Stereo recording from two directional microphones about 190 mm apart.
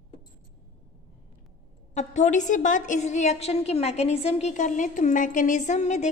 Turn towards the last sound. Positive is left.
turn(degrees=40)  # may be behind; listen again after turning